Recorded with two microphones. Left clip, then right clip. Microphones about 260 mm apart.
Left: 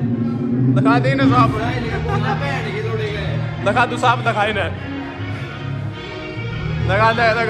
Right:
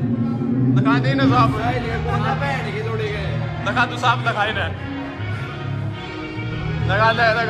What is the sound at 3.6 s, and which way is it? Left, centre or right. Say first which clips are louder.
Speech: left 3 dB; centre.